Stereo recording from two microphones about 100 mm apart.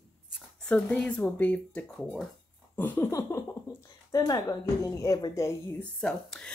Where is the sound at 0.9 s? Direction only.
10° left (ahead or behind).